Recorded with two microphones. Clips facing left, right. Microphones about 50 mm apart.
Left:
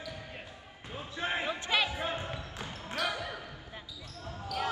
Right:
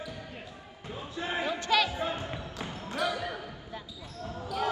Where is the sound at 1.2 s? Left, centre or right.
Left.